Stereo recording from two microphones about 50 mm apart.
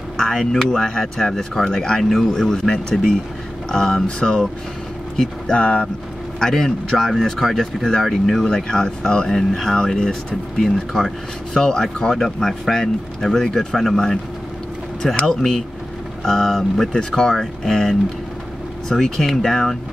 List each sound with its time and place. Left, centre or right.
0.2 s speech: centre
5.6 s speech: left
6.4 s speech: centre
8.5 s speech: centre
16.3 s speech: centre